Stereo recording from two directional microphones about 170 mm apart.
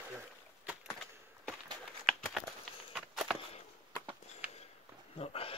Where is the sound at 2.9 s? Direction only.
Centre (ahead or behind).